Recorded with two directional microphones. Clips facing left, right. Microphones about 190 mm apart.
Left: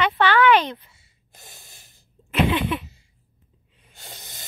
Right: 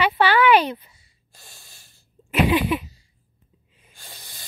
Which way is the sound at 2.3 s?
10° right (ahead or behind).